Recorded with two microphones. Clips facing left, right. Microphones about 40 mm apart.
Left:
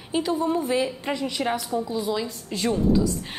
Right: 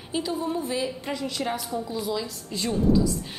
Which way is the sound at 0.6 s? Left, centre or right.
Left.